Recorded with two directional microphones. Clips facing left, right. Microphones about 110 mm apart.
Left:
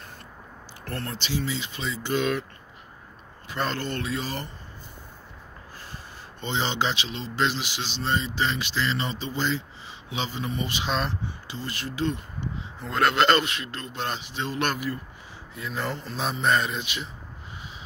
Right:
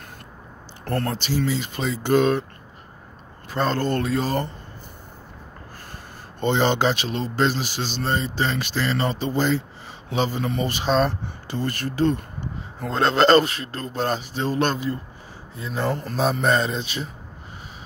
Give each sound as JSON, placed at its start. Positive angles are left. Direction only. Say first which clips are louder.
{"t": 0.8, "sound": "speech", "louder": "right 8 dB", "side_deg": -45}
{"t": 3.4, "sound": "speech", "louder": "right 6 dB", "side_deg": -40}
{"t": 6.4, "sound": "speech", "louder": "right 7 dB", "side_deg": -50}
{"t": 12.9, "sound": "speech", "louder": "right 5 dB", "side_deg": -30}
{"t": 16.0, "sound": "speech", "louder": "right 6 dB", "side_deg": -45}